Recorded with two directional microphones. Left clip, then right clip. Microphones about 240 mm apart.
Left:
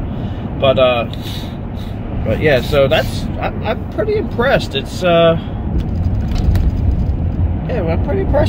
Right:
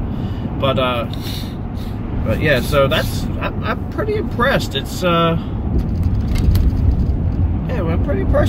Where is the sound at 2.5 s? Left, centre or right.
Left.